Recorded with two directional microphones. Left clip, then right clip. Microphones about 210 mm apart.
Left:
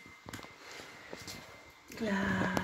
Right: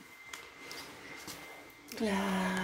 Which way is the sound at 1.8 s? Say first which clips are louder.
Right 1 dB; 10° right (ahead or behind).